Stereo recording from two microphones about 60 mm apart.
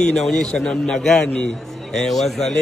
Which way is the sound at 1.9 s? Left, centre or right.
Centre.